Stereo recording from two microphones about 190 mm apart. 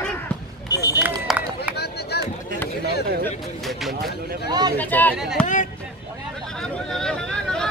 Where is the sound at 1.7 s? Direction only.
60° left (ahead or behind).